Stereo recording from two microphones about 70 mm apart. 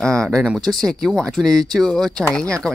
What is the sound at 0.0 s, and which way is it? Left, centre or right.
Speech, centre.